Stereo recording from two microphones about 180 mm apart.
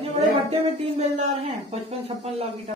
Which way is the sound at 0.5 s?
35° right (ahead or behind).